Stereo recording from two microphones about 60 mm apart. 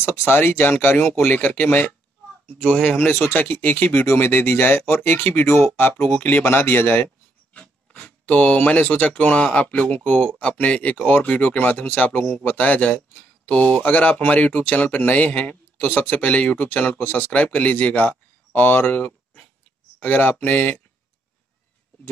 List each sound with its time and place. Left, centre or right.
0.3 s speech: left
4.0 s speech: left
7.5 s speech: left
12.4 s speech: left